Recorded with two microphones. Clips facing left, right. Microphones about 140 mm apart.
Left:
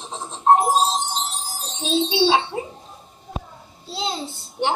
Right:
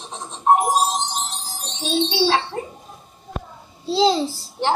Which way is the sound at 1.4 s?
Centre (ahead or behind).